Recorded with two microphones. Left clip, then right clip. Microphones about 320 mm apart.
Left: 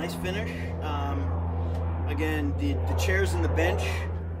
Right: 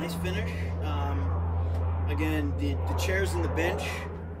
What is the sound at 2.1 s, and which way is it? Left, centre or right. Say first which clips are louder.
Speech: left 1 dB; centre.